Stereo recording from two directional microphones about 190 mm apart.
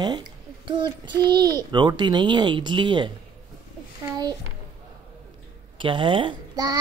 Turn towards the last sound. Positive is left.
turn(degrees=-20)  # may be behind; listen again after turning